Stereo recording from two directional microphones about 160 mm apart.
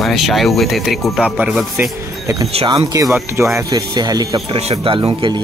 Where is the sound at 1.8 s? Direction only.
20° right (ahead or behind).